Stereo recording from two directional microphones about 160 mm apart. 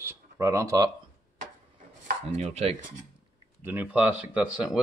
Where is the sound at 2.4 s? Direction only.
40° right (ahead or behind).